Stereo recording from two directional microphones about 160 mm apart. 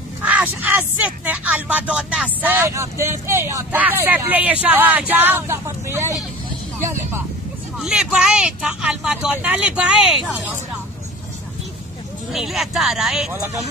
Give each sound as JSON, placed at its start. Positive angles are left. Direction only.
{"t": 0.2, "sound": "speech", "side_deg": -10}
{"t": 7.8, "sound": "speech", "side_deg": -5}
{"t": 12.3, "sound": "speech", "side_deg": 0}